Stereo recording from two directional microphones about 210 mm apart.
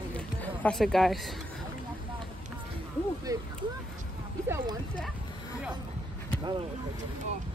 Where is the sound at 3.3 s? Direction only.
15° right (ahead or behind).